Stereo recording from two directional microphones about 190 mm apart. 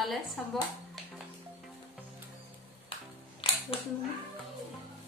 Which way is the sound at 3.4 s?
25° left (ahead or behind).